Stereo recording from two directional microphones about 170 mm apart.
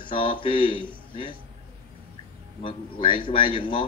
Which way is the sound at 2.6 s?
30° left (ahead or behind).